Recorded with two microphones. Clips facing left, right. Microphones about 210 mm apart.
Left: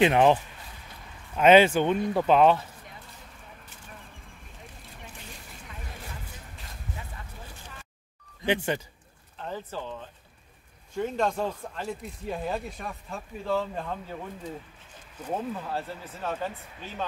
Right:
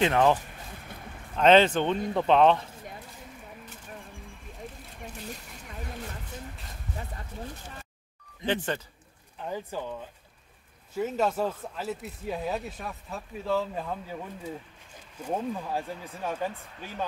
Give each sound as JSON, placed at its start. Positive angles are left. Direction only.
{"t": 0.0, "sound": "speech", "side_deg": 15}
{"t": 8.5, "sound": "speech", "side_deg": 10}
{"t": 9.4, "sound": "speech", "side_deg": -10}